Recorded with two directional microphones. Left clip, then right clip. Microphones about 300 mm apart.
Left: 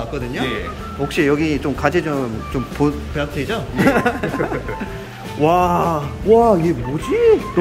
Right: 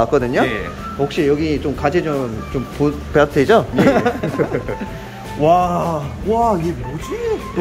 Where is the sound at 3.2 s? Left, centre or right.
Centre.